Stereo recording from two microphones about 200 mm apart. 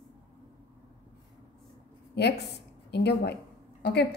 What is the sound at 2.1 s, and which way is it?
A woman's voice, 55° left (ahead or behind).